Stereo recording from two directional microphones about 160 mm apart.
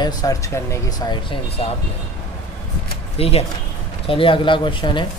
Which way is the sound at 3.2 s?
40° left (ahead or behind).